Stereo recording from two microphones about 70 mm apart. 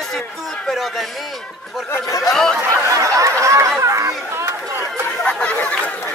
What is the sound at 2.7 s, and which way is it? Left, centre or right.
Speech, right.